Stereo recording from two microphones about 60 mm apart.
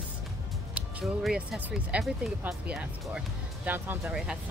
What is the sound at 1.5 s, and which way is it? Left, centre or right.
Speech, right.